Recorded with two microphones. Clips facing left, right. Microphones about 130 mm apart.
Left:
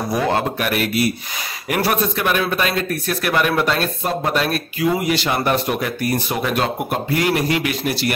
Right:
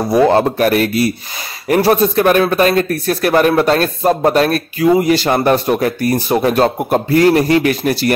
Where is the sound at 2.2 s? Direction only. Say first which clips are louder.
Right 9 dB; 45° right (ahead or behind).